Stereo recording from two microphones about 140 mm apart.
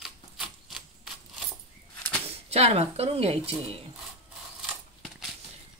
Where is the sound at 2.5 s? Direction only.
50° right (ahead or behind).